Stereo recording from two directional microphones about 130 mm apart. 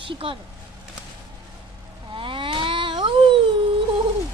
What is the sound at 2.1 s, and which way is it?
Cat, 40° right (ahead or behind).